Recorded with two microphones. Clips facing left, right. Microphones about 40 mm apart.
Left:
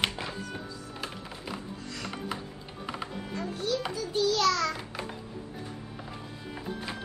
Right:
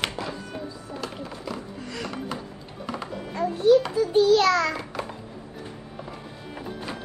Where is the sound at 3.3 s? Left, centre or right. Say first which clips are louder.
Right 14 dB; right.